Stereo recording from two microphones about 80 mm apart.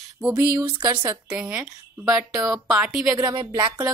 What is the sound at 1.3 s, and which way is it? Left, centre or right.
Speech, centre.